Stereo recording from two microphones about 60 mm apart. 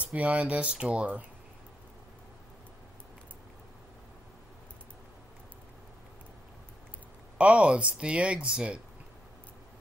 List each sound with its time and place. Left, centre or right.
0.0 s speech: right
7.3 s speech: right